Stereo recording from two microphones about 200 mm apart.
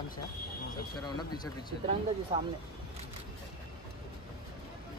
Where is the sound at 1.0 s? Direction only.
20° left (ahead or behind).